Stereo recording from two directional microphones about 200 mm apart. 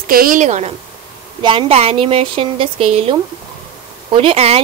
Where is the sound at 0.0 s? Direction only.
45° right (ahead or behind).